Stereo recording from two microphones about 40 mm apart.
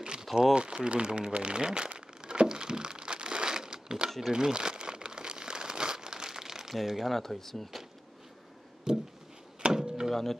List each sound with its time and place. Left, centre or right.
0.2 s crumpling: centre
0.6 s speech: right
2.0 s crumpling: centre
6.7 s speech: centre
7.2 s speech: centre
8.9 s a sound: centre
9.6 s door: centre